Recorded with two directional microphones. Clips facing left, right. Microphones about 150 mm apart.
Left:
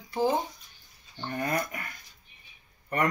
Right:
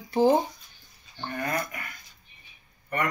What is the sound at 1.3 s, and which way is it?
Speech, 30° left (ahead or behind).